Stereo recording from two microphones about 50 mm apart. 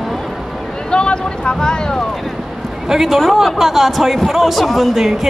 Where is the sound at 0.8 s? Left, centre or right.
Centre.